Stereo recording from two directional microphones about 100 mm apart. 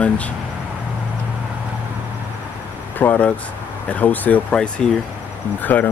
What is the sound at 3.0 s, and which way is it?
Speech, 15° left (ahead or behind).